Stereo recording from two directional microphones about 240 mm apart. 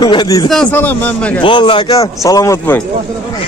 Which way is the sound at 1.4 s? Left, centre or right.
Centre.